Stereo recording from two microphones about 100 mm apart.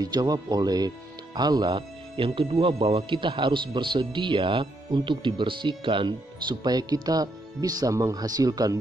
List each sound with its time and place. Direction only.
0.0 s speech: 40° right (ahead or behind); by 3.0 s 70° right (ahead or behind)
3.0 s speech: 55° right (ahead or behind); by 8.7 s 40° right (ahead or behind)